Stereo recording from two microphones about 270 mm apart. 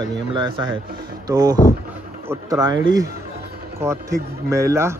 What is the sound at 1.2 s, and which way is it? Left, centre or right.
Speech, centre.